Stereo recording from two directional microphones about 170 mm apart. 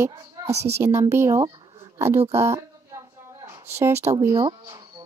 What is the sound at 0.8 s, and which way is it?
Speech, 15° right (ahead or behind).